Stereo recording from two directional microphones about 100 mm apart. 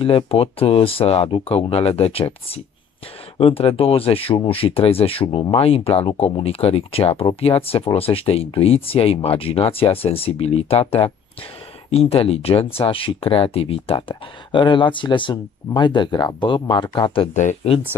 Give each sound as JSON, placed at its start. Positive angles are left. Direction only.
{"t": 0.0, "sound": "speech", "side_deg": 70}